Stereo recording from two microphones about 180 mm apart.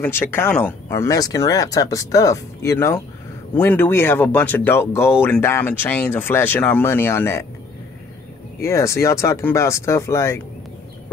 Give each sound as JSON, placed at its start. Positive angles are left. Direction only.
{"t": 0.0, "sound": "speech", "side_deg": 10}
{"t": 8.6, "sound": "speech", "side_deg": 15}